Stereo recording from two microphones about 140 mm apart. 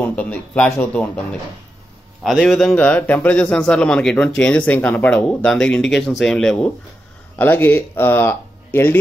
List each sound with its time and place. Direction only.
0.0 s a man's voice: 10° left (ahead or behind)